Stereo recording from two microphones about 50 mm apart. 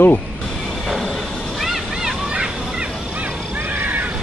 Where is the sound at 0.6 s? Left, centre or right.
Centre.